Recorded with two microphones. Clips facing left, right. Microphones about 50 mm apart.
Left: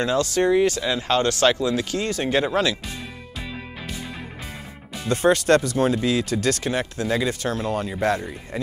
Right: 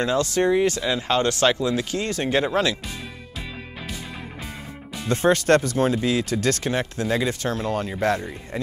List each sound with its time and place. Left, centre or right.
0.0 s speech: right
2.2 s speech: right
2.5 s speech: right
5.1 s speech: right